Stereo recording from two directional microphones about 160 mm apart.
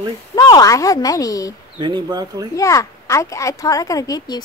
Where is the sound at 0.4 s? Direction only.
25° left (ahead or behind).